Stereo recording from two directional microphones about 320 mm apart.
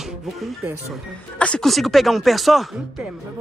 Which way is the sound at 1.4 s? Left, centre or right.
Centre.